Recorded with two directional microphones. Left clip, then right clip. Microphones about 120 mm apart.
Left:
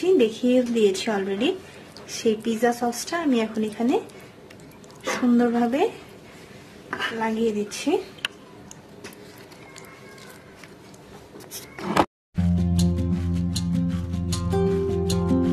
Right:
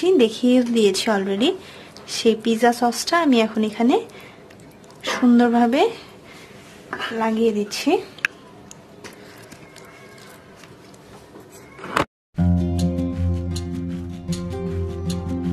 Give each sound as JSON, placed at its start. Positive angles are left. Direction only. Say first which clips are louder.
{"t": 0.0, "sound": "a woman's voice", "louder": "right 3 dB", "side_deg": -45}
{"t": 5.0, "sound": "speech", "louder": "right 4 dB", "side_deg": -40}
{"t": 6.9, "sound": "a woman's voice", "louder": "even", "side_deg": 0}
{"t": 7.2, "sound": "speech", "louder": "right 6 dB", "side_deg": -40}
{"t": 12.4, "sound": "music", "louder": "right 3 dB", "side_deg": 0}